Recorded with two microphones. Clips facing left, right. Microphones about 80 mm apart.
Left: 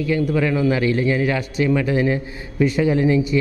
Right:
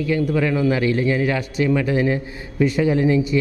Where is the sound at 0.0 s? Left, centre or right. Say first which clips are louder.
Even; centre.